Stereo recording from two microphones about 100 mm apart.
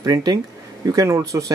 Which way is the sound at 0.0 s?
40° right (ahead or behind).